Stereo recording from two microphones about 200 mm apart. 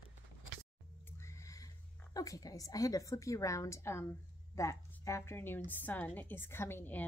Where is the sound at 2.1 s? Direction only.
15° left (ahead or behind).